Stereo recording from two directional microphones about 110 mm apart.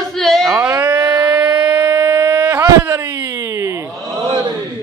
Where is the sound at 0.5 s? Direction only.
25° right (ahead or behind).